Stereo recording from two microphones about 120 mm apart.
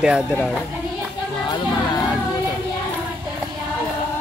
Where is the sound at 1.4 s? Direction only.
40° left (ahead or behind).